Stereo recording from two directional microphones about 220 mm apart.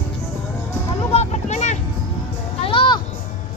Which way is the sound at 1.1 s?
30° left (ahead or behind).